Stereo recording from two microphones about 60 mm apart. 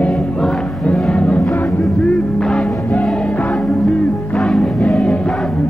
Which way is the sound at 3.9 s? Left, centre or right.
Left.